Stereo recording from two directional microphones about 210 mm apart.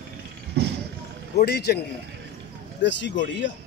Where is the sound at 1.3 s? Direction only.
50° left (ahead or behind).